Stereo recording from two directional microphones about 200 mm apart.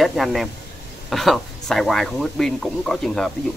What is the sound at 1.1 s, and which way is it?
Speech, centre (ahead or behind).